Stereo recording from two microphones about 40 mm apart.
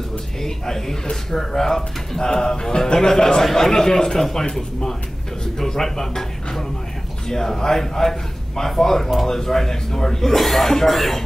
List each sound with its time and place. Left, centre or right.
0.4 s speech: centre
5.4 s music: centre
7.2 s speech: centre